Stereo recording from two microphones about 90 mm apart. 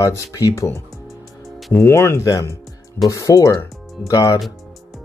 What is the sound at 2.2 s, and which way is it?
Speech, 40° left (ahead or behind).